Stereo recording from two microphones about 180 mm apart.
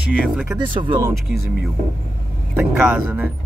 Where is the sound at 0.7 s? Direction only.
25° right (ahead or behind).